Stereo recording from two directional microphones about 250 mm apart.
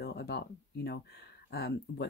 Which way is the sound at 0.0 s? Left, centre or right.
Left.